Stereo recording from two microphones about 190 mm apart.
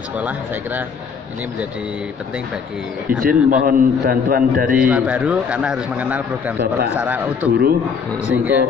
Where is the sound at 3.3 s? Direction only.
45° right (ahead or behind).